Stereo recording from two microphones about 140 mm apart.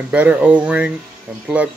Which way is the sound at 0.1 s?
10° right (ahead or behind).